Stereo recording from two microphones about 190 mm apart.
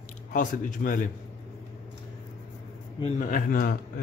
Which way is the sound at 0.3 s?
45° left (ahead or behind).